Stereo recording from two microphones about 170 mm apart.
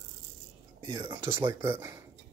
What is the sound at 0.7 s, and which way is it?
Speech, 25° right (ahead or behind).